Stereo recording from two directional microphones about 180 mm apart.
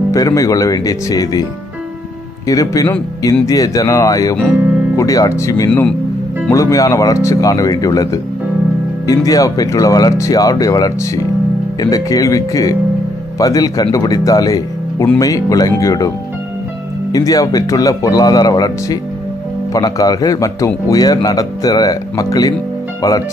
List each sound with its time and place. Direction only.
0.1 s a man's voice: 20° left (ahead or behind)
2.4 s a man's voice: 20° left (ahead or behind)
5.7 s speech: 5° left (ahead or behind)
6.5 s a man's voice: 20° left (ahead or behind)
17.1 s a man's voice: 20° left (ahead or behind)